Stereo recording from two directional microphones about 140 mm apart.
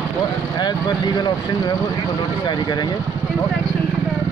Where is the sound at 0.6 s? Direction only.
30° left (ahead or behind).